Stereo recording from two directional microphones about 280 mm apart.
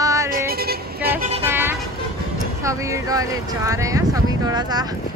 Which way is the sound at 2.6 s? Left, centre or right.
Centre.